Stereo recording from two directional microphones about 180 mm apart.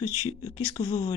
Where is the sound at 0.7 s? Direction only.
20° left (ahead or behind).